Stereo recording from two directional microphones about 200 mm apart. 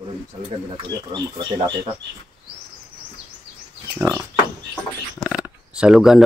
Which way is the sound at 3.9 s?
10° right (ahead or behind).